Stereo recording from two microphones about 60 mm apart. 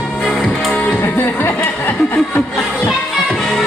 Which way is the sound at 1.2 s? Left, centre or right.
Left.